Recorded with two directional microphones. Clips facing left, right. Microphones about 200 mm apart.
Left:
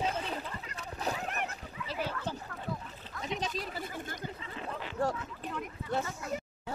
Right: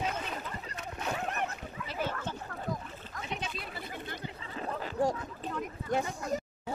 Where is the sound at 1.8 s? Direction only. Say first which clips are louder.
Left 3 dB; 45° right (ahead or behind).